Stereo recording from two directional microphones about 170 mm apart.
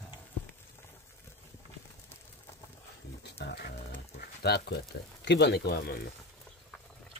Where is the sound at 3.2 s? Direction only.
75° left (ahead or behind).